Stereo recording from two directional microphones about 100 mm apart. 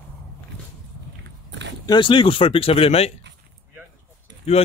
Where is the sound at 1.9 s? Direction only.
55° left (ahead or behind); by 3.1 s 80° left.